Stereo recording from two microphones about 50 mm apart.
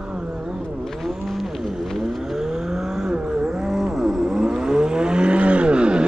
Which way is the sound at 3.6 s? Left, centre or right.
Centre.